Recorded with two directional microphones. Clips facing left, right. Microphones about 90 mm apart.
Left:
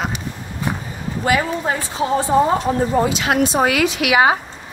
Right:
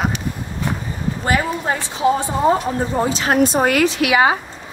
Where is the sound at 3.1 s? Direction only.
40° right (ahead or behind).